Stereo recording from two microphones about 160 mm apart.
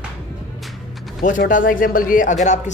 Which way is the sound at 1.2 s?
55° left (ahead or behind).